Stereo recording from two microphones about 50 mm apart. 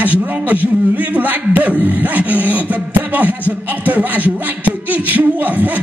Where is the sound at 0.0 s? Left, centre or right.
Right.